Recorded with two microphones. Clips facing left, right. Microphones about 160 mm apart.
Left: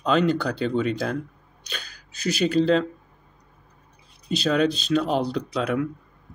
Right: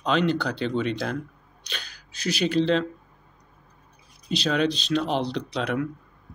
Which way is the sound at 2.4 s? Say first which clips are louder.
Left 2 dB; 40° left (ahead or behind).